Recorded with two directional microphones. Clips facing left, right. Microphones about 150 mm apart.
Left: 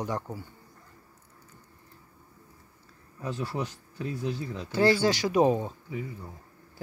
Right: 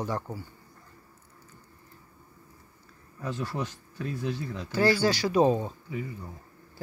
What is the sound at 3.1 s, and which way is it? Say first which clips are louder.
Speech: even; 10° left (ahead or behind).